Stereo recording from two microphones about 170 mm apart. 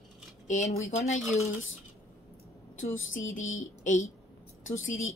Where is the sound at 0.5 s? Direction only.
40° left (ahead or behind).